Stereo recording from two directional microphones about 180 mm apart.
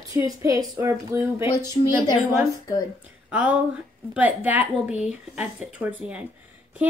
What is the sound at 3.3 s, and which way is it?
A woman's voice, 10° right (ahead or behind).